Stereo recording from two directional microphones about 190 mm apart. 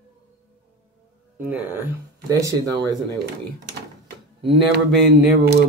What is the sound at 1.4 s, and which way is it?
Speech, 10° right (ahead or behind).